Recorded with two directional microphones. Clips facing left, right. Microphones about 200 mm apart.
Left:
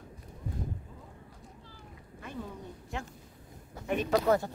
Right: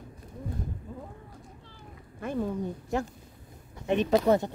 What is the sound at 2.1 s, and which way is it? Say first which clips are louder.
Speech: right 11 dB; 55° right (ahead or behind).